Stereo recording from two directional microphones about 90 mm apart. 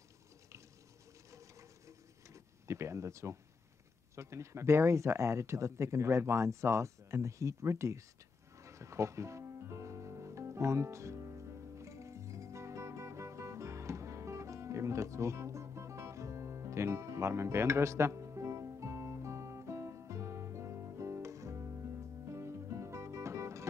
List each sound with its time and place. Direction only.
1.3 s rub: 35° right (ahead or behind)
4.1 s speech: 35° right (ahead or behind)
8.6 s music: 35° right (ahead or behind)